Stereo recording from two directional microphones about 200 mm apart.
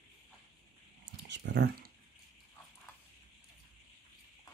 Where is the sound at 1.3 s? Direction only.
60° right (ahead or behind).